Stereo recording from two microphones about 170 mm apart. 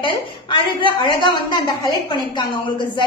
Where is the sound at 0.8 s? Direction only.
30° left (ahead or behind).